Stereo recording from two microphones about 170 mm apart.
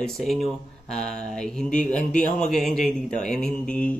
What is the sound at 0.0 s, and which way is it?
Speech, centre (ahead or behind).